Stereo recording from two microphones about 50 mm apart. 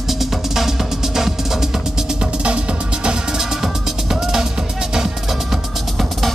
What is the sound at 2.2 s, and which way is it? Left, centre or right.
Music, right.